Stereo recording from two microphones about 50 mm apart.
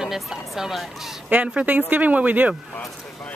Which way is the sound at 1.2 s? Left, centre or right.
Right.